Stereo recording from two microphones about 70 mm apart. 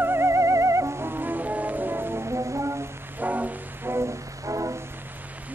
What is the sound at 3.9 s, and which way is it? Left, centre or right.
Music, right.